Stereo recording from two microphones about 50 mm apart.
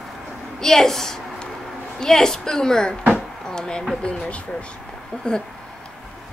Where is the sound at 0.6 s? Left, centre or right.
Centre.